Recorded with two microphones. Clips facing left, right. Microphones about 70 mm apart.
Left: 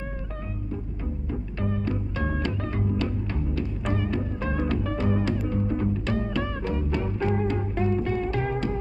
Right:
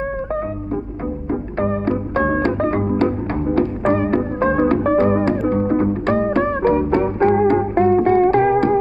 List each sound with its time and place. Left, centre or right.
1.3 s music: right